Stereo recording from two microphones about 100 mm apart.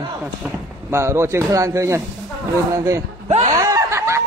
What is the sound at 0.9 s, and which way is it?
A man's voice, 25° right (ahead or behind).